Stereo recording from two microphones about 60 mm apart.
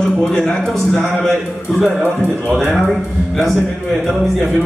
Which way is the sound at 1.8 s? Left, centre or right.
Centre.